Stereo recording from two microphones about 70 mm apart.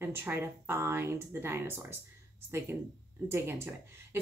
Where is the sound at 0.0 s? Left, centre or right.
Right.